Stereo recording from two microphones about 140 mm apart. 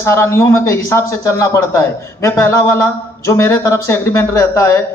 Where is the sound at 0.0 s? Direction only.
20° left (ahead or behind).